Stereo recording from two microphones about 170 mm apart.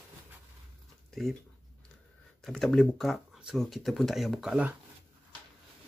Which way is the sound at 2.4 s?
Centre (ahead or behind).